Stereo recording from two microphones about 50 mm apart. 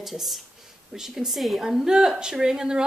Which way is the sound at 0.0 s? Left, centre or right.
Centre.